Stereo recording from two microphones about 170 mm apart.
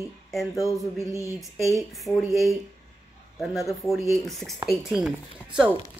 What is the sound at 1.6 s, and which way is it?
Speech, centre (ahead or behind).